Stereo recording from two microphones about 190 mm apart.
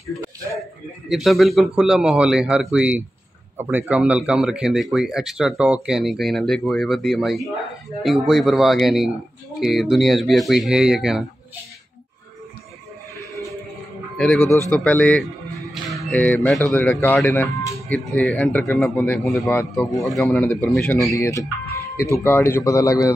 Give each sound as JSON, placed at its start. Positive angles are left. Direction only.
{"t": 1.0, "sound": "speech", "side_deg": 0}
{"t": 14.1, "sound": "speech", "side_deg": 5}
{"t": 21.1, "sound": "speech", "side_deg": 15}